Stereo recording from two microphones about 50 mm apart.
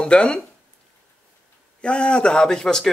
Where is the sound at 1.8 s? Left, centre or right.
Centre.